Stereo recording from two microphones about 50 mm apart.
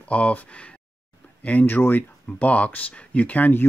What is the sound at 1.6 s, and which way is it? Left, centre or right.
Speech, left.